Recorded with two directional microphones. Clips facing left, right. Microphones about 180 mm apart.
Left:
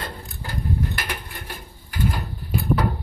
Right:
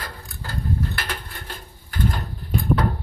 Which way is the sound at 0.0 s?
15° left (ahead or behind).